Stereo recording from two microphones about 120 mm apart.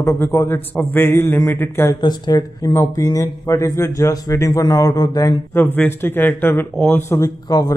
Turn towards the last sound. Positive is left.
turn(degrees=30)  # may be behind; listen again after turning